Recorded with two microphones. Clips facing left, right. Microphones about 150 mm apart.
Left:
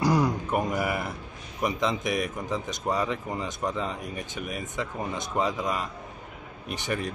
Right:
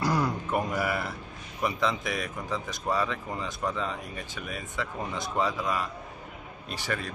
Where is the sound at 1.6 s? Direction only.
20° left (ahead or behind).